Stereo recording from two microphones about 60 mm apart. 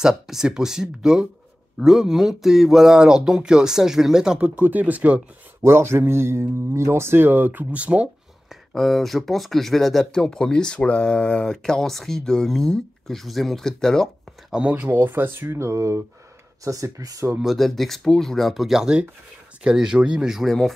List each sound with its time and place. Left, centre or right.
0.0 s speech: centre
4.4 s speech: right
5.6 s speech: right
8.5 s speech: centre
14.5 s speech: right
14.9 s speech: right
15.4 s speech: right
17.4 s speech: centre
20.4 s speech: centre